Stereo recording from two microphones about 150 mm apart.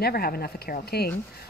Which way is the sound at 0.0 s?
90° left.